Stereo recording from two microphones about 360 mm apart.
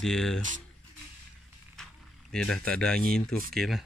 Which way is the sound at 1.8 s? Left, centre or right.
Centre.